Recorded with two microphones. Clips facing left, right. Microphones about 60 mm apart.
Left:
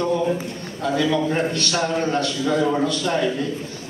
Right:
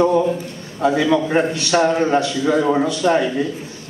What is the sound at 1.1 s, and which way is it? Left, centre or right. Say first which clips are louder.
A man's voice: right 4 dB; right.